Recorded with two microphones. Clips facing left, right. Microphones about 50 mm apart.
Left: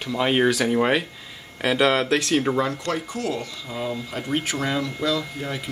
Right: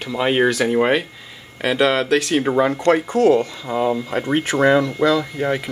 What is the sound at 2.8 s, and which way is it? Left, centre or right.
Speech, right.